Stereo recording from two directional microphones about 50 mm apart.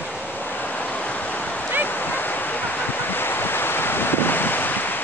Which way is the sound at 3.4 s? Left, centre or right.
Left.